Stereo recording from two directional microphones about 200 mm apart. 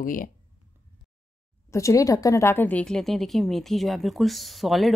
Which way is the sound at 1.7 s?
15° left (ahead or behind).